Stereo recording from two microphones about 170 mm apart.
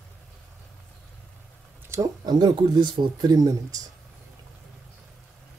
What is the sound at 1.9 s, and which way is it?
Speech, 20° right (ahead or behind).